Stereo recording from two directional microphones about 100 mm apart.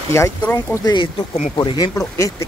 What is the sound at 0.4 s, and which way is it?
Speech, 15° left (ahead or behind).